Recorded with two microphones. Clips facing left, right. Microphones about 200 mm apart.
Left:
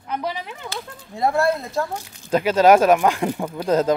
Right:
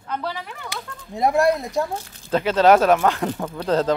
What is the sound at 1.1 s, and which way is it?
Speech, 20° right (ahead or behind).